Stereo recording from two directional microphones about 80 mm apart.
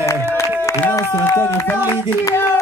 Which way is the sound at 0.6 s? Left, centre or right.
Left.